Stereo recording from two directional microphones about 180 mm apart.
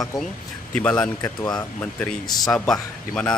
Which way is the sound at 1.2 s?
20° left (ahead or behind).